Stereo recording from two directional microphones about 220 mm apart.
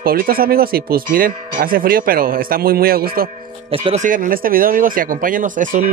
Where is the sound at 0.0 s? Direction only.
40° right (ahead or behind).